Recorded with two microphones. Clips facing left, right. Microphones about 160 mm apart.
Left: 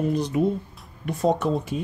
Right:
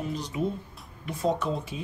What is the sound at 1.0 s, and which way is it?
Speech, 60° left (ahead or behind).